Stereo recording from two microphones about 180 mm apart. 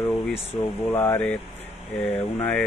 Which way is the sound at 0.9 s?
10° left (ahead or behind).